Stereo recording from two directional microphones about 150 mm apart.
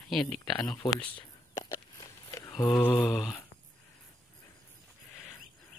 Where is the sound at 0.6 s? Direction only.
25° left (ahead or behind).